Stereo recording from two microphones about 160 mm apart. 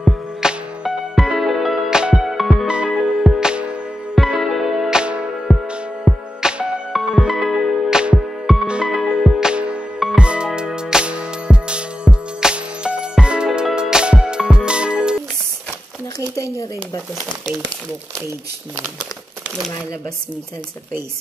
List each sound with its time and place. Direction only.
0.0 s music: 5° right (ahead or behind)
5.5 s music: 5° left (ahead or behind)
6.0 s music: 5° right (ahead or behind)
16.2 s a sound: 20° left (ahead or behind)